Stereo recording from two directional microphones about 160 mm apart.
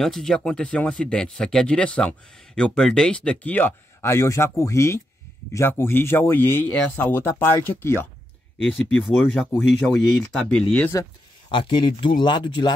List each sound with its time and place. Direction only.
0.0 s speech: centre (ahead or behind)
10.9 s speech: 25° left (ahead or behind)